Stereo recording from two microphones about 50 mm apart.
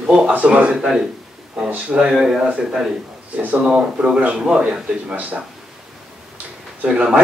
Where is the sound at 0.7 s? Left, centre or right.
Centre.